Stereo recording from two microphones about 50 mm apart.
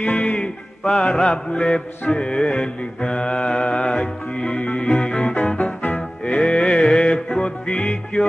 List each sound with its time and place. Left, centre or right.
0.1 s music: left
0.8 s music: centre; by 6.0 s left
6.2 s music: centre